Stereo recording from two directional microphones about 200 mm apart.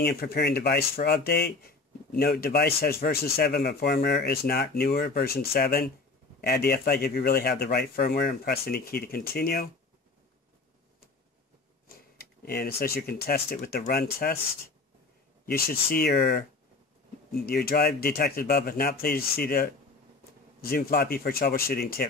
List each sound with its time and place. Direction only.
0.0 s speech: 50° left (ahead or behind)
12.2 s speech: 50° left (ahead or behind)
15.4 s speech: 50° left (ahead or behind)